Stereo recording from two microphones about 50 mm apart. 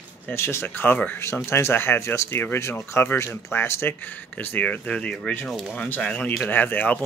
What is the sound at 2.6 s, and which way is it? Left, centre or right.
Speech, left.